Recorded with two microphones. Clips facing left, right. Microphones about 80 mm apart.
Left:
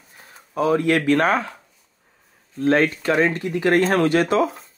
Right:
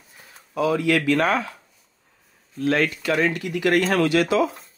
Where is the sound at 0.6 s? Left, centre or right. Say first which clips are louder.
Left 2 dB; left.